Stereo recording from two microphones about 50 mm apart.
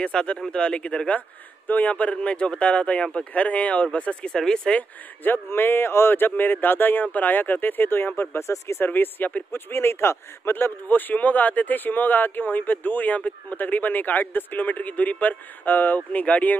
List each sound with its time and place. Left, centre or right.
0.0 s speech: centre
4.7 s speech: left
8.4 s speech: left
8.8 s speech: left
9.5 s speech: left
10.5 s speech: left